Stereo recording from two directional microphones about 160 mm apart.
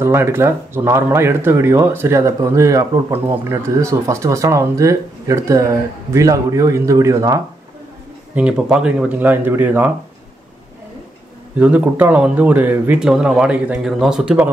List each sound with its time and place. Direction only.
0.0 s speech: 15° right (ahead or behind)
8.4 s speech: 5° right (ahead or behind)
11.5 s speech: 10° right (ahead or behind)